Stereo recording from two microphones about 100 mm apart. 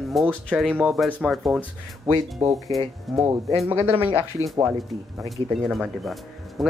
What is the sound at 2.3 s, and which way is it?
Speech, 30° right (ahead or behind).